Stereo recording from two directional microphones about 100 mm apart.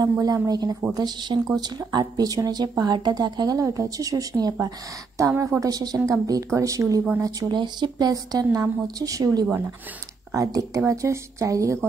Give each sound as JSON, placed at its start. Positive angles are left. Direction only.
{"t": 0.2, "sound": "a woman's voice", "side_deg": -40}